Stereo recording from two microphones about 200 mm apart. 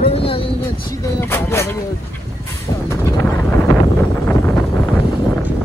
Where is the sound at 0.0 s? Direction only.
30° left (ahead or behind).